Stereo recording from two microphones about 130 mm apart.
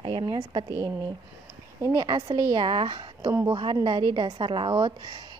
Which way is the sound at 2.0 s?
35° right (ahead or behind).